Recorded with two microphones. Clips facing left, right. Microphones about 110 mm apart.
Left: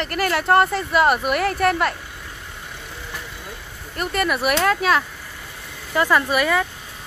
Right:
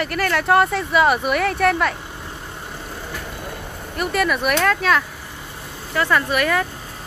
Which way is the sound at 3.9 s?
Centre (ahead or behind).